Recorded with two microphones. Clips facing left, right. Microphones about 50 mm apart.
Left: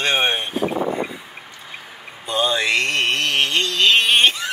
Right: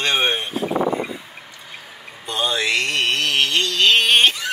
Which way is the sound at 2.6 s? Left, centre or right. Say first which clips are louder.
Left 1 dB; left.